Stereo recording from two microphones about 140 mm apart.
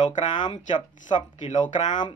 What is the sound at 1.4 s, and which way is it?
Speech, 60° left (ahead or behind).